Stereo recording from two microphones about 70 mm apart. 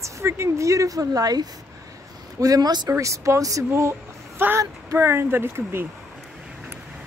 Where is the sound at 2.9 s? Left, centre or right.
Right.